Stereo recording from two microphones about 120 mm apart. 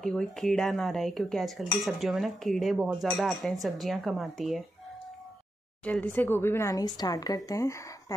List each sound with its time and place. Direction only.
0.0 s speech: 5° left (ahead or behind)
5.9 s speech: 10° left (ahead or behind)